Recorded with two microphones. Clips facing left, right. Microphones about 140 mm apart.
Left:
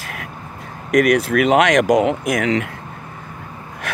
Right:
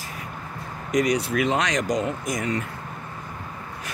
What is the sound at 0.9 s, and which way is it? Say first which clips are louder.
Speech: left 7 dB; 60° left (ahead or behind).